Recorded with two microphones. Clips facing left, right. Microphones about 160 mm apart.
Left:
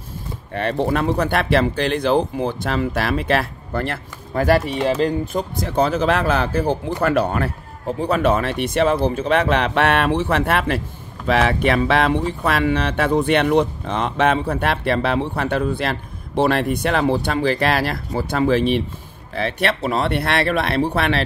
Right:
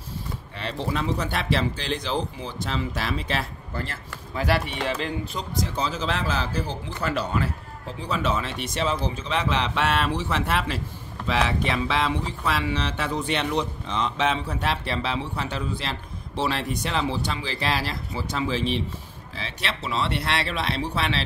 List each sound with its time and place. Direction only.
0.6 s speech: 55° left (ahead or behind)